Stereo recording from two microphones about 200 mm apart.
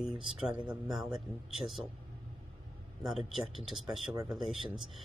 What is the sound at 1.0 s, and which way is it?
Speech, centre (ahead or behind).